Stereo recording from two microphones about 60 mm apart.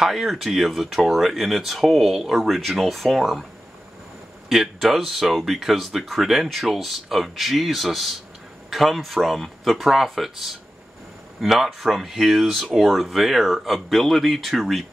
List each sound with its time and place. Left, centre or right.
0.0 s speech: centre
4.5 s speech: centre